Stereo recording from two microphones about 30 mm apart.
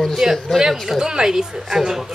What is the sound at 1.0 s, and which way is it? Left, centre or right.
Speech, right.